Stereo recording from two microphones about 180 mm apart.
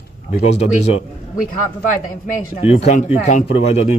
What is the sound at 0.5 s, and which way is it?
Speech, 40° left (ahead or behind).